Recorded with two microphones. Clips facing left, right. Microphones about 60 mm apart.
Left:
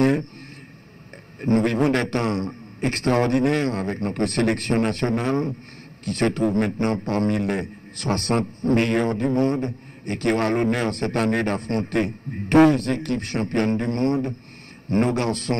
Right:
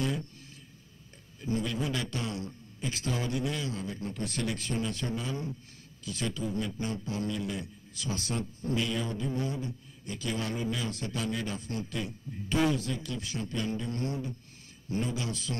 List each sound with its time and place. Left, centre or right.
0.0 s a man's voice: left
1.4 s a man's voice: left